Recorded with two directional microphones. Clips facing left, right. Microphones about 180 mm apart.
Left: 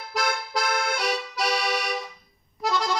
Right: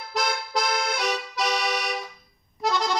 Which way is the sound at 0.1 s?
5° left (ahead or behind).